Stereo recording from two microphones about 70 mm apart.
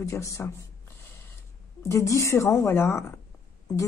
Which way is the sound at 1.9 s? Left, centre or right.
Left.